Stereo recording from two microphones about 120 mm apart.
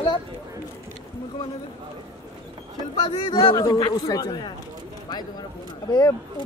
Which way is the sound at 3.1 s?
40° left (ahead or behind).